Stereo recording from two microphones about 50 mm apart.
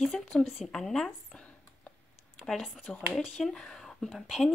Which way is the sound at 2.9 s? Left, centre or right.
Left.